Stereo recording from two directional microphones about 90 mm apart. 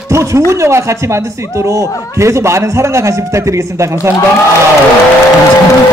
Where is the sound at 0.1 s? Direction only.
35° right (ahead or behind).